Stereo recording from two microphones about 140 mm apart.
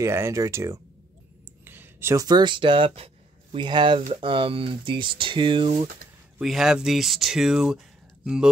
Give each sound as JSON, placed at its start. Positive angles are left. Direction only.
{"t": 0.0, "sound": "speech", "side_deg": -20}
{"t": 1.6, "sound": "a sound", "side_deg": -15}
{"t": 2.2, "sound": "speech", "side_deg": -30}
{"t": 6.4, "sound": "speech", "side_deg": 0}